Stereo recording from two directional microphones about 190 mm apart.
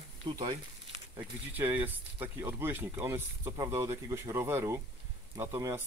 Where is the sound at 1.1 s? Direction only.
10° right (ahead or behind).